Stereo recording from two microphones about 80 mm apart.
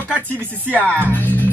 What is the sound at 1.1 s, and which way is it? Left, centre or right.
Music, left.